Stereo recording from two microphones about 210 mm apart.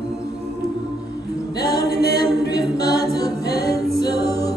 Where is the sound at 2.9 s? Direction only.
50° left (ahead or behind).